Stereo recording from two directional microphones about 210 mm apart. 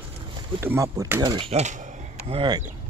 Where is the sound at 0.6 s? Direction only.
15° right (ahead or behind); by 2.4 s 35° right (ahead or behind).